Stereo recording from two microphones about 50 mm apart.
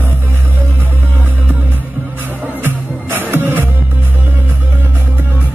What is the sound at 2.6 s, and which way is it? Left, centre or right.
Music, right.